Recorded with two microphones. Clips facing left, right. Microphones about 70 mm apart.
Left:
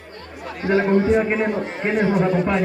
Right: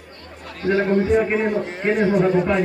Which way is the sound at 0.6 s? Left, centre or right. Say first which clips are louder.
Even; centre.